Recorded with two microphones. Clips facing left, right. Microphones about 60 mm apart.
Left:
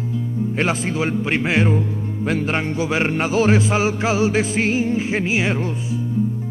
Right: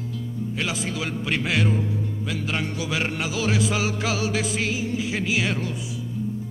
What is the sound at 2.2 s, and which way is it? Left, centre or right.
Music, left.